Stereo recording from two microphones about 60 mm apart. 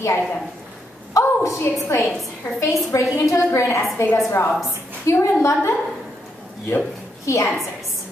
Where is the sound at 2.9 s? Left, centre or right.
Left.